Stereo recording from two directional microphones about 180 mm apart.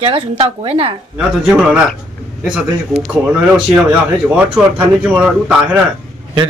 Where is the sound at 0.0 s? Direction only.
30° right (ahead or behind).